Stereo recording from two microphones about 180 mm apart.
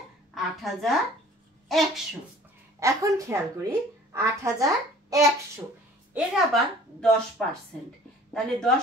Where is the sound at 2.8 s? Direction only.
20° right (ahead or behind).